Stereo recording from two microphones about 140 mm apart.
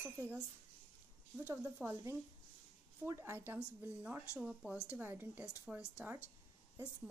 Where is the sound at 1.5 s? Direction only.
15° right (ahead or behind).